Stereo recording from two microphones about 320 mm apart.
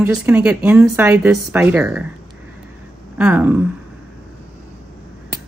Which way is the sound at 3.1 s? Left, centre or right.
Centre.